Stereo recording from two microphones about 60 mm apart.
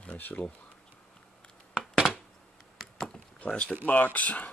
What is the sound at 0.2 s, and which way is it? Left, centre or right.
Speech, left.